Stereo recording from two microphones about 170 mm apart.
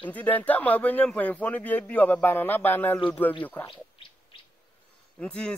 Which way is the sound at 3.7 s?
30° left (ahead or behind).